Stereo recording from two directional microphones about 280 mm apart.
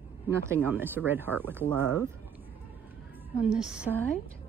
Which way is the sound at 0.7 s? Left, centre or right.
Centre.